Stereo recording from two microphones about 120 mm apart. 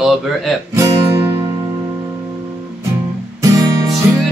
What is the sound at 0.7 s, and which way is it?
Music, 25° right (ahead or behind).